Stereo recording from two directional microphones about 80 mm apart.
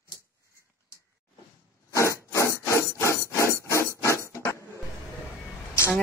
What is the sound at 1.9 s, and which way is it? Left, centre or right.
Wood, left.